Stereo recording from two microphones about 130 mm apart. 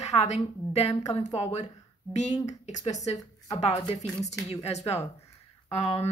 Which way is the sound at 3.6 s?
50° left (ahead or behind).